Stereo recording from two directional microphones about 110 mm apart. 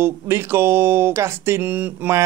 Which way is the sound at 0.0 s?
20° right (ahead or behind).